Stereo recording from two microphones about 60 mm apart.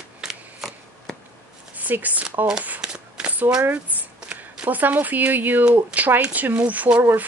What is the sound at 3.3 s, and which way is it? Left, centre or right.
Speech, centre.